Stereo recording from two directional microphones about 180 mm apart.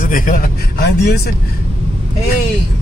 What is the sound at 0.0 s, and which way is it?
A man's voice, 50° left (ahead or behind).